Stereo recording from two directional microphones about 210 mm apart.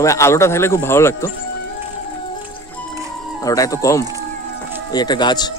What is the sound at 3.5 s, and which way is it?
Speech, 15° left (ahead or behind).